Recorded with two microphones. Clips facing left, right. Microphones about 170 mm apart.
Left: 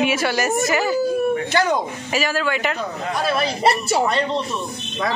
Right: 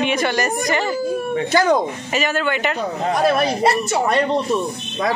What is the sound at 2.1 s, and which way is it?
Speech, centre (ahead or behind).